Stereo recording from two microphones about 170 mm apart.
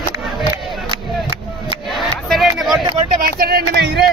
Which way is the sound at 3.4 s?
65° right (ahead or behind).